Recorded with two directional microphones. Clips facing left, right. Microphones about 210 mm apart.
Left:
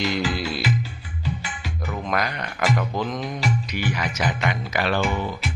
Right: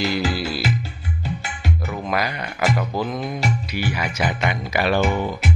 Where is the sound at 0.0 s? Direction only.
5° right (ahead or behind).